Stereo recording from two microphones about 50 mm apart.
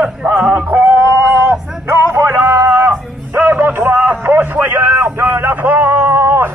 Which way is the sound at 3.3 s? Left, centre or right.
Right.